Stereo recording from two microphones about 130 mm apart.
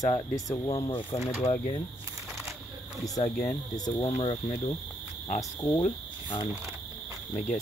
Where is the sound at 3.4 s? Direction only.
30° left (ahead or behind).